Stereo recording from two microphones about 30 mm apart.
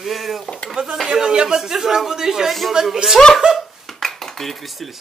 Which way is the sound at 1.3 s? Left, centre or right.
Right.